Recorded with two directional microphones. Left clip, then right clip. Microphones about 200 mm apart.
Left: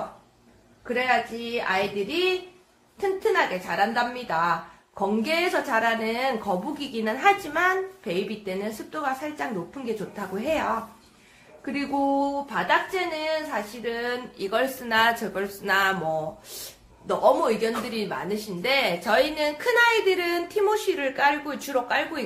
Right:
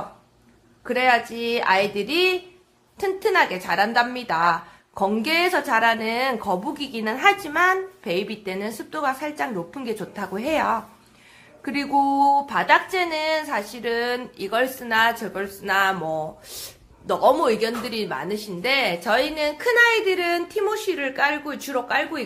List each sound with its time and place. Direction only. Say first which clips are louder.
0.8 s a woman's voice: right 4 dB; 45° right (ahead or behind); by 16.2 s 25° right (ahead or behind)
17.1 s speech: right 2 dB; 45° right (ahead or behind); by 22.2 s 25° right (ahead or behind)